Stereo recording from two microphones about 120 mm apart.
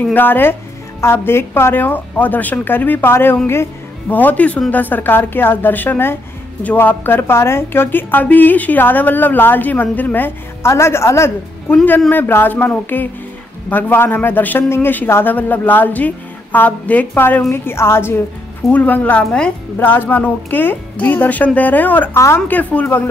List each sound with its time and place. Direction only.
0.0 s a woman's voice: 15° left (ahead or behind)